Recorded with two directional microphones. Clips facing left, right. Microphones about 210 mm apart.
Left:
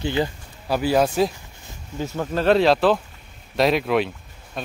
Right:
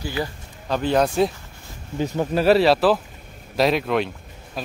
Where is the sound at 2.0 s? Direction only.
15° right (ahead or behind).